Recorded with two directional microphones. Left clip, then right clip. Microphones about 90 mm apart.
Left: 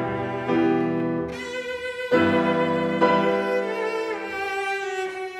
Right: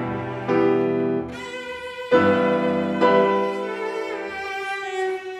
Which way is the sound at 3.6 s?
35° left (ahead or behind).